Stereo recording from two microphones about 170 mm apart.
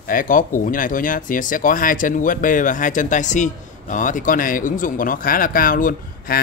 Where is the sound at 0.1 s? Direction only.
55° left (ahead or behind).